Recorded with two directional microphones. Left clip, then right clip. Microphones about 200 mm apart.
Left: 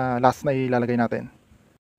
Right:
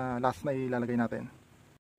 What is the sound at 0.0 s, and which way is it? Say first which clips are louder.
A man's voice: left 10 dB; 35° left (ahead or behind).